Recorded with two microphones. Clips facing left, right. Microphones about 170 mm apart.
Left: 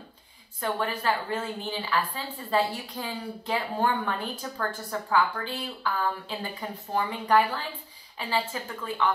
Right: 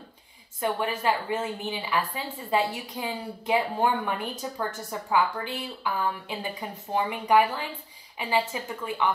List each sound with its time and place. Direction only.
0.6 s a woman's voice: 15° right (ahead or behind)